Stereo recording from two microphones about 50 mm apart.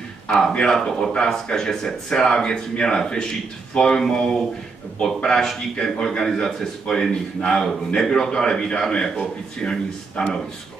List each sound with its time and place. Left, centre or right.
0.7 s a man's voice: centre